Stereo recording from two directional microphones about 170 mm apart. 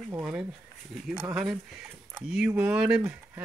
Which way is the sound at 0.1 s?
10° right (ahead or behind).